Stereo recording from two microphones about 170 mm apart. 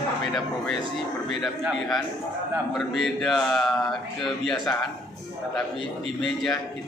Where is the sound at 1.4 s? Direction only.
Centre (ahead or behind).